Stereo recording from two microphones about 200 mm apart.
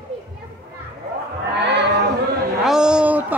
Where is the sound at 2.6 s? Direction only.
5° right (ahead or behind).